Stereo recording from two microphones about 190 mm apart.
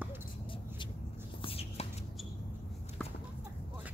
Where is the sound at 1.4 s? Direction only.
30° left (ahead or behind).